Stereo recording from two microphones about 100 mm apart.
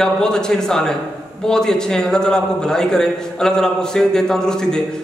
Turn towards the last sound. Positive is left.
turn(degrees=5)  # may be behind; listen again after turning